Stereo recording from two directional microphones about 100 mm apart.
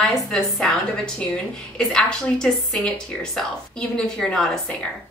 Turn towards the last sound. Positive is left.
turn(degrees=10)  # may be behind; listen again after turning